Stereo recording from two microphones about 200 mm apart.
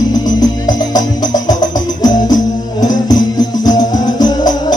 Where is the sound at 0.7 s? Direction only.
20° left (ahead or behind).